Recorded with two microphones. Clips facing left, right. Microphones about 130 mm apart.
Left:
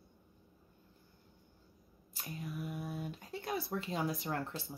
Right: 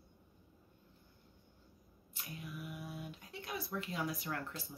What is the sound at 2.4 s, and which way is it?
Speech, 40° left (ahead or behind).